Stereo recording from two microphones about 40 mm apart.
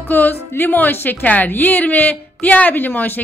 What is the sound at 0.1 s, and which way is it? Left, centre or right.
A woman's voice, left.